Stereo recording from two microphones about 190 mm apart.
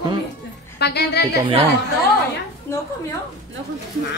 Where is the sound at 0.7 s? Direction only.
60° left (ahead or behind).